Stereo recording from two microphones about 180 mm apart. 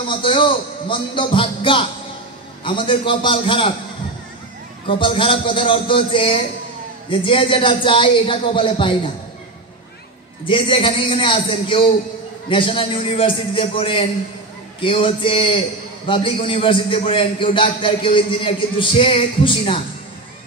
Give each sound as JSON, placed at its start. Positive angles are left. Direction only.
{"t": 0.0, "sound": "a man's voice", "side_deg": 30}
{"t": 4.8, "sound": "a man's voice", "side_deg": 30}
{"t": 10.4, "sound": "a man's voice", "side_deg": 30}